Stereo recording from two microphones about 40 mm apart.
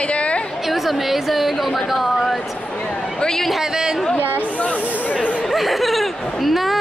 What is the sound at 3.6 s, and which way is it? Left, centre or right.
Speech, centre.